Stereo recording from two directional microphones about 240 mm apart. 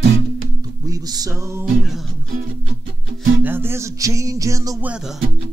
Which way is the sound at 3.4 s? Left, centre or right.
Centre.